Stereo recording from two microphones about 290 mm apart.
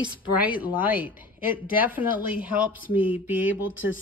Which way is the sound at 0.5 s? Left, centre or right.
Centre.